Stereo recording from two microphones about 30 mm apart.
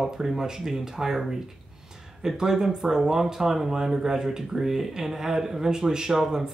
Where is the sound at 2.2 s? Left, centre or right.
Centre.